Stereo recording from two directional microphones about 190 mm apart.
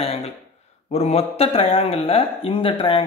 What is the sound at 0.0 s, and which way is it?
A man's voice, 30° left (ahead or behind).